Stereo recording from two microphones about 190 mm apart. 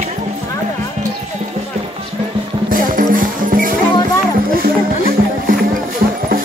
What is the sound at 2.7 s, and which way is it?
Music, 45° right (ahead or behind).